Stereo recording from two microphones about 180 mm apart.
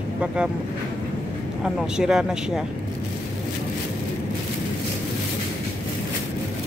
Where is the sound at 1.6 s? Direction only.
5° right (ahead or behind).